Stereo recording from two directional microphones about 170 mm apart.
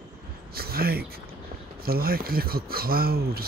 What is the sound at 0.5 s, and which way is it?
Speech, 65° right (ahead or behind).